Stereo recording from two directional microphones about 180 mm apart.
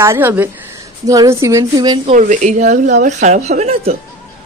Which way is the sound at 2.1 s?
45° right (ahead or behind).